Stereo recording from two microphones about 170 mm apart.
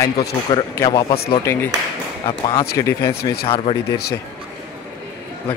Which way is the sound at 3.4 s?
30° left (ahead or behind).